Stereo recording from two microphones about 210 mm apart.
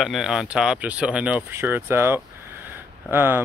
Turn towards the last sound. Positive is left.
turn(degrees=-10)  # may be behind; listen again after turning